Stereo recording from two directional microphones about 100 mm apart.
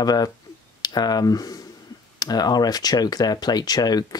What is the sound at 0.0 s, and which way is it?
Speech, 40° left (ahead or behind).